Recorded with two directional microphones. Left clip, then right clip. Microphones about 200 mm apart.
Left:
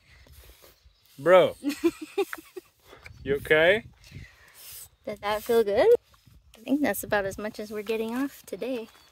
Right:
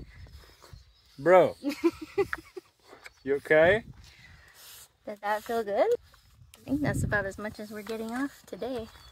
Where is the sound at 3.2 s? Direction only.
5° left (ahead or behind).